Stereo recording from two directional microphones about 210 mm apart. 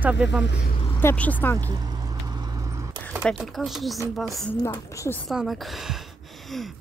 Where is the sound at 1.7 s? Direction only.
20° right (ahead or behind).